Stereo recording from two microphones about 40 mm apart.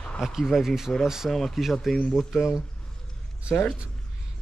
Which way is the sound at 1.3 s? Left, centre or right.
Centre.